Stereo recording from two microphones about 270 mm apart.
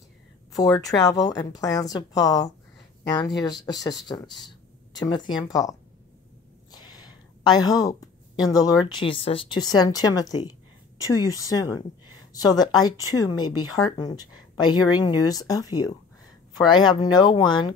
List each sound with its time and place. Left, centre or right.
0.6 s speech: centre
6.7 s a sound: centre
8.4 s speech: centre